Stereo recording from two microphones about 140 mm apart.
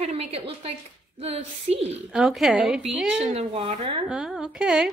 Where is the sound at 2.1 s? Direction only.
Centre (ahead or behind).